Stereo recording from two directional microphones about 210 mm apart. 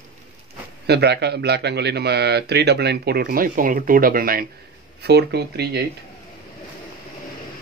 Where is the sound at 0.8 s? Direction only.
50° right (ahead or behind).